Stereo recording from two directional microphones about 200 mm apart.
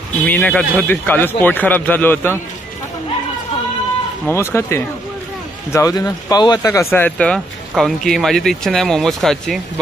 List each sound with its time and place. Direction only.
0.3 s a man's voice: 5° left (ahead or behind)
4.3 s a man's voice: 15° left (ahead or behind)